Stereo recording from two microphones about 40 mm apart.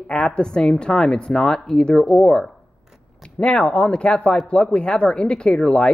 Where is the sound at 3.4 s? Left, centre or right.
Left.